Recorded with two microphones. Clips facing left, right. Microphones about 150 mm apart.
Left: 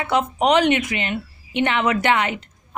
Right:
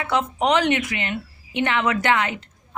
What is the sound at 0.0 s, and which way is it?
A woman's voice, 20° left (ahead or behind).